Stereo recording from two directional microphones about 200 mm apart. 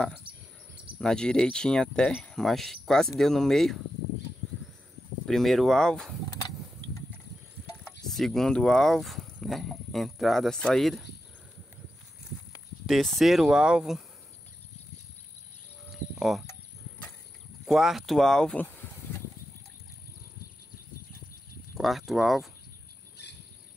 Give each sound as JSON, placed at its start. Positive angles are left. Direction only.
{"t": 0.9, "sound": "speech", "side_deg": 5}
{"t": 5.2, "sound": "speech", "side_deg": 0}
{"t": 6.3, "sound": "a sound", "side_deg": 20}
{"t": 8.1, "sound": "speech", "side_deg": 0}
{"t": 12.8, "sound": "speech", "side_deg": 0}
{"t": 15.9, "sound": "a sound", "side_deg": 0}
{"t": 17.6, "sound": "speech", "side_deg": 0}
{"t": 21.7, "sound": "speech", "side_deg": 0}